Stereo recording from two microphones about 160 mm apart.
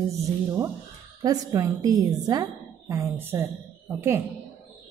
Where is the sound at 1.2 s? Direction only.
20° right (ahead or behind).